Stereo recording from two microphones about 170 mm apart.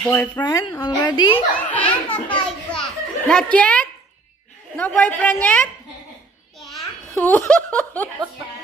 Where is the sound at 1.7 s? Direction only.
10° left (ahead or behind).